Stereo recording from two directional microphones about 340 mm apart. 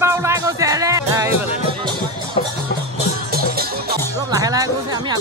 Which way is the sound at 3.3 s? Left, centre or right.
Right.